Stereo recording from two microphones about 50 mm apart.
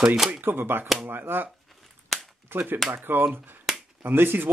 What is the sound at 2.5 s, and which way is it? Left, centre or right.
Speech, right.